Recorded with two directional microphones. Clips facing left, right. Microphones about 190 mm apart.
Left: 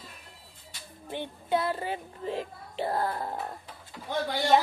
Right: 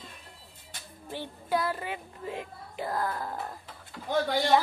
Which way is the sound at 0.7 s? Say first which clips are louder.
Right 1 dB; 50° right (ahead or behind).